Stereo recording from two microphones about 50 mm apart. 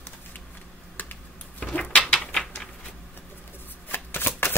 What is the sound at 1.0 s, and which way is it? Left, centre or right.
Finger snapping, left.